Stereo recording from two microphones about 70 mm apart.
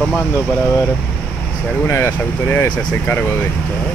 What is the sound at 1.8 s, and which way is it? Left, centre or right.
Speech, left.